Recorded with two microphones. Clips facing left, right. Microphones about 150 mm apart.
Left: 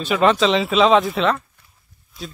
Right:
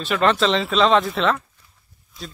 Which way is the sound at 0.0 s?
5° left (ahead or behind).